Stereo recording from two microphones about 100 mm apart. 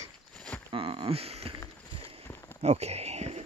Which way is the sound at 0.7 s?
65° right (ahead or behind).